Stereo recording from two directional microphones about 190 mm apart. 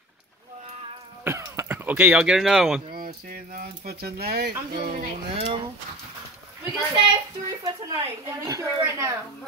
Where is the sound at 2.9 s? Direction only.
50° right (ahead or behind).